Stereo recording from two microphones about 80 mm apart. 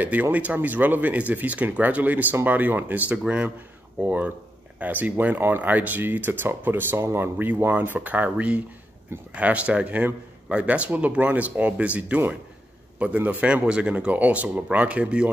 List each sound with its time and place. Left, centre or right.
0.0 s a man's voice: centre